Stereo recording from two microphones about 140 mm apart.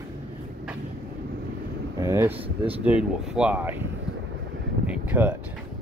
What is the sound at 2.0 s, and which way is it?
Speech, 20° right (ahead or behind).